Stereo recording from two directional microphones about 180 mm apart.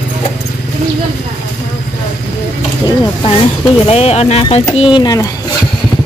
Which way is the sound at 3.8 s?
35° left (ahead or behind).